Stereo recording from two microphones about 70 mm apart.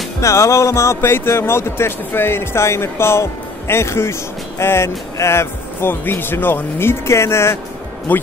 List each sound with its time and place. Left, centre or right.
0.2 s speech: left
8.1 s speech: left